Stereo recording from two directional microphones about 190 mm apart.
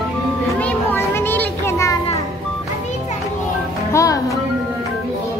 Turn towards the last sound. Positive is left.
turn(degrees=15)  # may be behind; listen again after turning